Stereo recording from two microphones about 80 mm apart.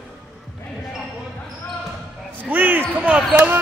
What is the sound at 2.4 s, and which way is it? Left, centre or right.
Basketball bounce, right.